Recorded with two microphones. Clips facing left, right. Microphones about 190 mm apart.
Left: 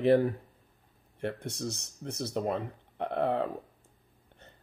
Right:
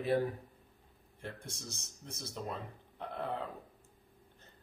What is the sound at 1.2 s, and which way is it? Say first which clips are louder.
Speech: left 11 dB; 65° left (ahead or behind).